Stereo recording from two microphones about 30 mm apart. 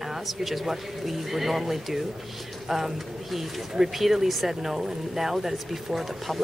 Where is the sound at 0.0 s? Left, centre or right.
Centre.